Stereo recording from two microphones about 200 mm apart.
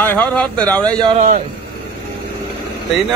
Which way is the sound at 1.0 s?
25° right (ahead or behind).